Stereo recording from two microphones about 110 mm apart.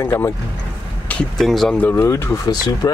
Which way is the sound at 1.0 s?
5° left (ahead or behind).